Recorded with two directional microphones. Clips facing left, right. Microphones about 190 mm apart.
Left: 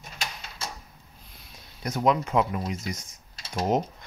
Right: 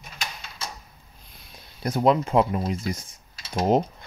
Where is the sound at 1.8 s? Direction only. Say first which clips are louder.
Right 4 dB; 30° right (ahead or behind).